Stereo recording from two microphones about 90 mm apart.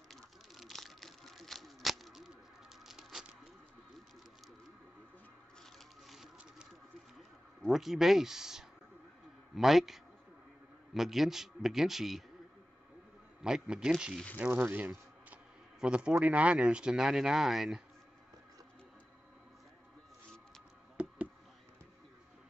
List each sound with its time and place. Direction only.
0.1 s a sound: centre (ahead or behind)
2.9 s patter: 5° right (ahead or behind)
5.6 s a sound: centre (ahead or behind)
9.6 s a man's voice: centre (ahead or behind)
13.4 s speech: 10° right (ahead or behind)
14.4 s speech: 20° right (ahead or behind); by 17.8 s 5° right (ahead or behind)